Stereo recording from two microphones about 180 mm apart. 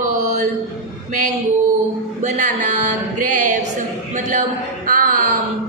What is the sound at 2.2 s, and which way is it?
Speech, 45° right (ahead or behind).